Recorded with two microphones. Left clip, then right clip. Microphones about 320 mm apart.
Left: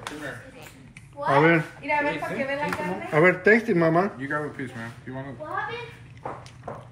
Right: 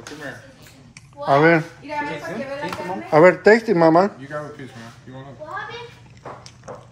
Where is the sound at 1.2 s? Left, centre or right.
Centre.